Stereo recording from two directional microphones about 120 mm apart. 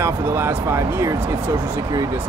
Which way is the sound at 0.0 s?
20° right (ahead or behind).